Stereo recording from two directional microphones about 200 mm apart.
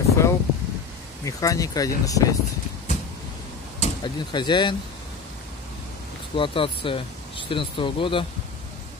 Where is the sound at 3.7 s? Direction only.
30° left (ahead or behind).